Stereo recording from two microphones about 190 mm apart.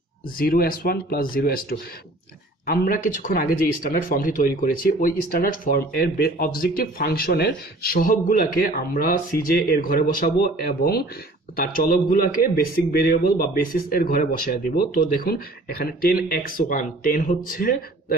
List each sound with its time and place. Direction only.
0.4 s speech: 50° left (ahead or behind)